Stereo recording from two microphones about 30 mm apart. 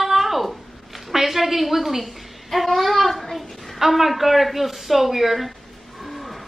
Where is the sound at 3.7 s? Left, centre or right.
Centre.